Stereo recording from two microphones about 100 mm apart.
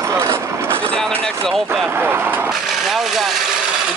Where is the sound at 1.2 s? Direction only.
5° left (ahead or behind).